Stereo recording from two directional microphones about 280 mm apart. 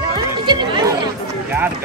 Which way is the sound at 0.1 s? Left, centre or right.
Centre.